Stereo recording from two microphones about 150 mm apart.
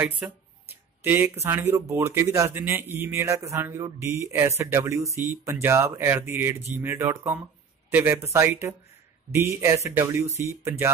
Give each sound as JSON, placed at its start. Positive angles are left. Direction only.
{"t": 0.0, "sound": "speech", "side_deg": -10}